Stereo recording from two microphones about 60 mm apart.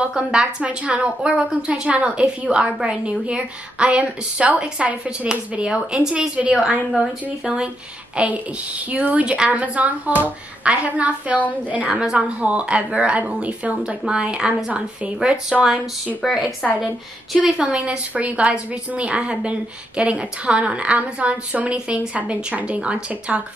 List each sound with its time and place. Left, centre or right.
0.0 s a woman's voice: centre
17.4 s a woman's voice: centre